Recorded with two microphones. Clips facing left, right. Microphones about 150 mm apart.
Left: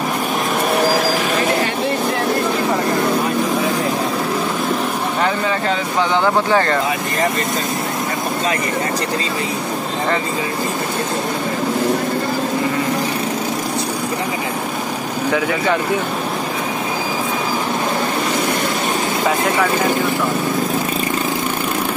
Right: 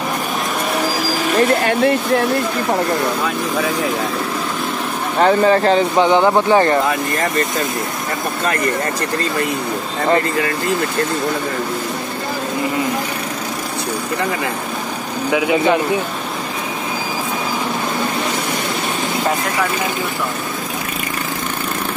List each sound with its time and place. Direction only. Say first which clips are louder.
5.2 s speech: right 9 dB; 40° right (ahead or behind)
5.9 s speech: right 4 dB; 20° right (ahead or behind)
15.3 s speech: right 4 dB; 20° right (ahead or behind)